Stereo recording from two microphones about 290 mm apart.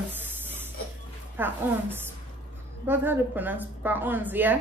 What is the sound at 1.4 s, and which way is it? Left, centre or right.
Speech, centre.